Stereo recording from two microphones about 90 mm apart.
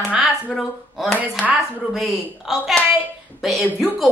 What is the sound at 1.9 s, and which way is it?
A woman's voice, 5° right (ahead or behind).